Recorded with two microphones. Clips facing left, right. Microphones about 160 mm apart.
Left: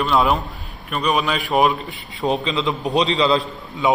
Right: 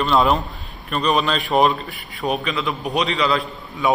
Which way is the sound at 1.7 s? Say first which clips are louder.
Left 1 dB; 20° left (ahead or behind).